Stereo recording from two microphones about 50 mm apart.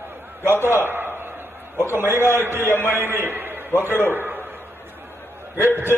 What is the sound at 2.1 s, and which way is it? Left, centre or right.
A man's voice, right.